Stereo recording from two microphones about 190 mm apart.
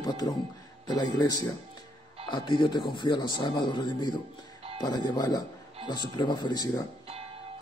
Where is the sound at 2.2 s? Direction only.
25° left (ahead or behind).